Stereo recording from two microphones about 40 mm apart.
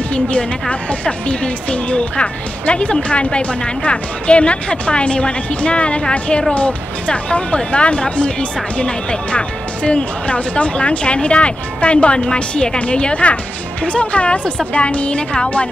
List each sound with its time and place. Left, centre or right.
0.1 s speech: left